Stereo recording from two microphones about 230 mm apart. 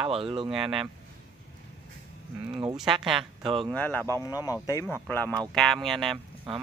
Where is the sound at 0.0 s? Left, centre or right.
Right.